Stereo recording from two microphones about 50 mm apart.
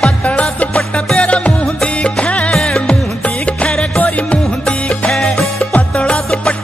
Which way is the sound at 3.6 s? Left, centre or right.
Left.